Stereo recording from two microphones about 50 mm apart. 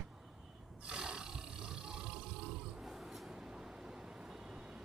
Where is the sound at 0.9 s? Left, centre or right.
Centre.